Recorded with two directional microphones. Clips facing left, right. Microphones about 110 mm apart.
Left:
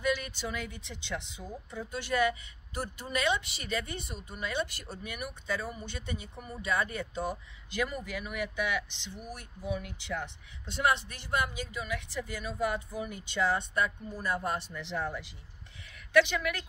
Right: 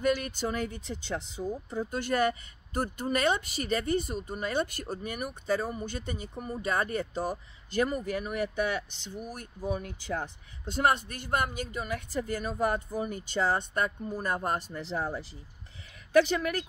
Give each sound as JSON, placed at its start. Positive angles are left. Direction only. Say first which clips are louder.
{"t": 0.0, "sound": "a woman's voice", "louder": "right 4 dB", "side_deg": -50}